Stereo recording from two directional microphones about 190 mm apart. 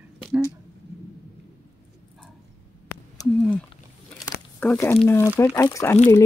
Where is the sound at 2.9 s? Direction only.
15° left (ahead or behind).